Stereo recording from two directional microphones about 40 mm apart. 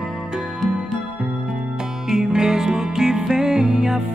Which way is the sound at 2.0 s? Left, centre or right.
Centre.